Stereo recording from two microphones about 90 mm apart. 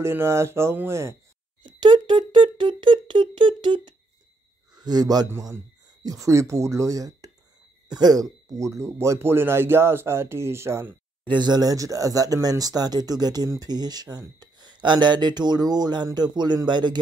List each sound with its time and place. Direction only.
0.0 s speech: 30° right (ahead or behind)
1.6 s speech: 60° right (ahead or behind)
4.7 s a man's voice: 45° right (ahead or behind); by 11.0 s 30° right (ahead or behind)
11.2 s speech: 55° right (ahead or behind)